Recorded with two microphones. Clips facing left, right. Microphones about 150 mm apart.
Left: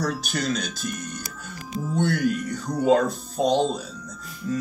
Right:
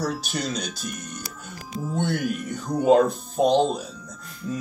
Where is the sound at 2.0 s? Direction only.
20° right (ahead or behind).